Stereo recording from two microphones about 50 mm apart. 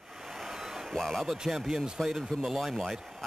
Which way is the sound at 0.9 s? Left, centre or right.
Centre.